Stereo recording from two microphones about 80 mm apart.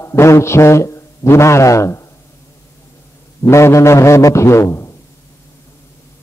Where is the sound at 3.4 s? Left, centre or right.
Left.